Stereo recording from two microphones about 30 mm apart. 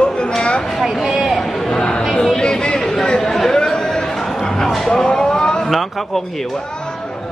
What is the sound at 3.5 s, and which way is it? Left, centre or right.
Chatter, left.